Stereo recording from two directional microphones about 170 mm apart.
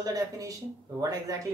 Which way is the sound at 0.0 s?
20° right (ahead or behind).